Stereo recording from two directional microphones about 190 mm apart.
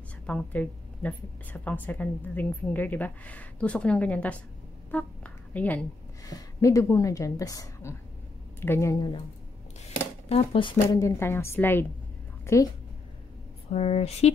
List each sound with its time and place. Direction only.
0.3 s a woman's voice: 10° left (ahead or behind)
4.9 s a sound: 10° left (ahead or behind)
6.2 s a woman's voice: 20° left (ahead or behind)
10.2 s a woman's voice: 30° left (ahead or behind); by 12.6 s 15° left (ahead or behind)
13.7 s speech: 35° left (ahead or behind)